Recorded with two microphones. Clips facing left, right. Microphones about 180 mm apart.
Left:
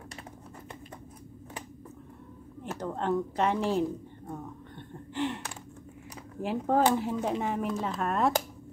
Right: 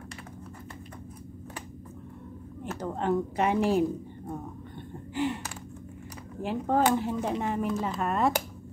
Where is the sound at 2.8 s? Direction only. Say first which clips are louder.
Right 2 dB; 5° right (ahead or behind).